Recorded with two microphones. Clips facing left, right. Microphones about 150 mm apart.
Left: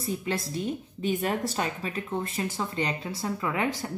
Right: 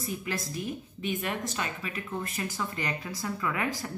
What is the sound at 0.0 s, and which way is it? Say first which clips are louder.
A woman's voice: left 4 dB; 30° left (ahead or behind).